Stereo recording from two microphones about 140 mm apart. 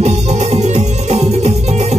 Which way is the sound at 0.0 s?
50° right (ahead or behind).